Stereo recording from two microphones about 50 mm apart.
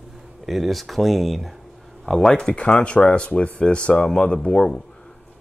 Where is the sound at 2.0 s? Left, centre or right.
Centre.